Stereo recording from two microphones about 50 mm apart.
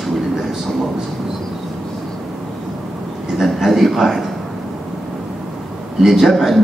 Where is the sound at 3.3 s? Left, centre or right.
Centre.